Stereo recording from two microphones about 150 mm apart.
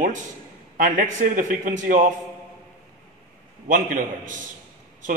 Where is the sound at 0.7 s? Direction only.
65° right (ahead or behind).